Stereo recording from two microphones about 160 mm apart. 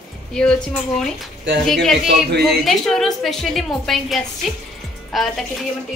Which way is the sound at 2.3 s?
90° right.